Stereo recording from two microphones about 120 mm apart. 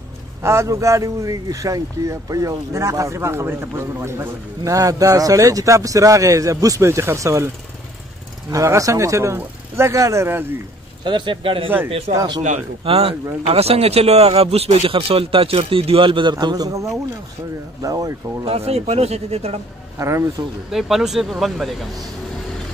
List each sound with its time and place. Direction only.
0.4 s speech: 20° right (ahead or behind)
11.1 s speech: 40° right (ahead or behind)
12.1 s speech: 65° right (ahead or behind)
12.8 s speech: 50° right (ahead or behind); by 18.1 s 30° right (ahead or behind)
18.4 s speech: 55° right (ahead or behind)
20.0 s speech: 25° right (ahead or behind)
20.7 s speech: 5° right (ahead or behind)